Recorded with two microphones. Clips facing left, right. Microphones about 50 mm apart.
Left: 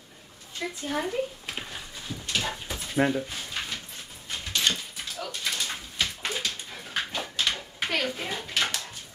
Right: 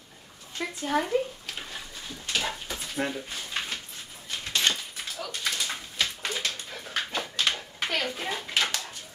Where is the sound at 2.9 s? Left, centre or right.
Centre.